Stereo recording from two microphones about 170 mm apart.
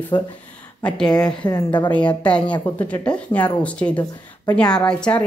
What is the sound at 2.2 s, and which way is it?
A woman's voice, 5° left (ahead or behind).